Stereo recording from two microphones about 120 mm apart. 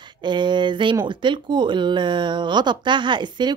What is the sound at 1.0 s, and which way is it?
Speech, 40° right (ahead or behind).